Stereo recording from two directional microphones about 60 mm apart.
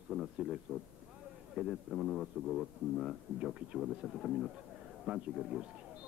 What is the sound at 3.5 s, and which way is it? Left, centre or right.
A man's voice, centre.